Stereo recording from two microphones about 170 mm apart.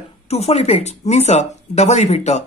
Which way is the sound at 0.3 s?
40° left (ahead or behind).